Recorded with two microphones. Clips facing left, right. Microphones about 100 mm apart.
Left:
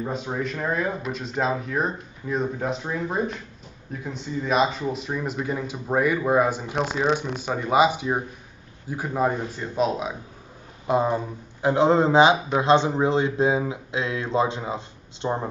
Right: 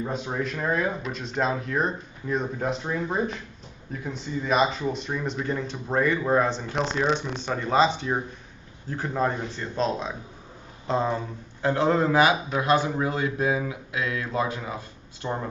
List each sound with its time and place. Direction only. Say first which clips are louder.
0.0 s speech: left 1 dB; 5° left (ahead or behind); by 15.4 s 20° left (ahead or behind)